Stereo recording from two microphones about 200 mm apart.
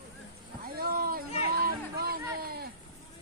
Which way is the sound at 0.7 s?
50° right (ahead or behind).